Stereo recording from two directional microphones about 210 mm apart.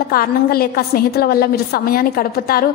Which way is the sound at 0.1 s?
45° left (ahead or behind).